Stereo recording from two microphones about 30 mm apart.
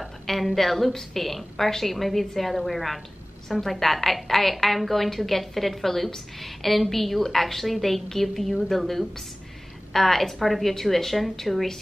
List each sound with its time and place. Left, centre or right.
0.0 s a woman's voice: centre